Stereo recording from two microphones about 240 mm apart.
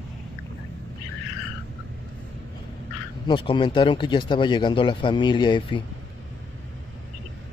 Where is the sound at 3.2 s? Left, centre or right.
Left.